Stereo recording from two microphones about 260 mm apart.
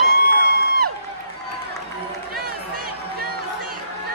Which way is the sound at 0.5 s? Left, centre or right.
Right.